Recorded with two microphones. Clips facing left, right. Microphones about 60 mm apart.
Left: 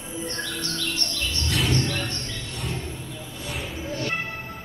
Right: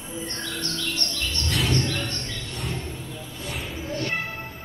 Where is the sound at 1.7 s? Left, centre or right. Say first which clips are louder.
Even; left.